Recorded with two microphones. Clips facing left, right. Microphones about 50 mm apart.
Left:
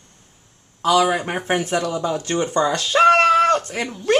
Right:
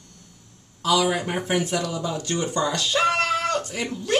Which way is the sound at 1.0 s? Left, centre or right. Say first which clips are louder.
Left 4 dB; left.